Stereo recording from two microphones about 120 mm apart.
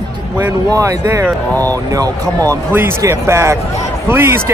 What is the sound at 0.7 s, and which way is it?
A man's voice, 25° right (ahead or behind).